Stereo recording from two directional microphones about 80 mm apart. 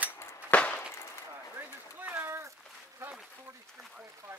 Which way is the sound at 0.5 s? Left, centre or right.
Centre.